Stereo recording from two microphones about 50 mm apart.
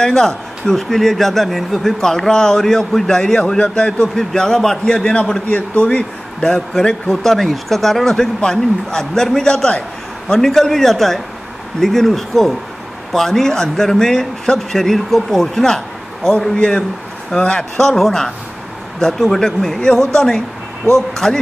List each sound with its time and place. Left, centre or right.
0.0 s a man's voice: centre
4.1 s a man's voice: centre
17.7 s a man's voice: centre